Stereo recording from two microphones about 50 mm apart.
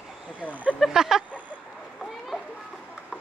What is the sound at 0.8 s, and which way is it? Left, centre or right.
Speech, centre.